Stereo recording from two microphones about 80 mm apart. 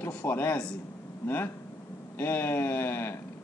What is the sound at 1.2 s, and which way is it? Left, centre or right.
Speech, left.